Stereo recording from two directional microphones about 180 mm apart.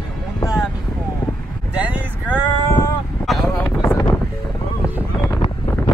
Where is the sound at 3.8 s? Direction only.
25° left (ahead or behind).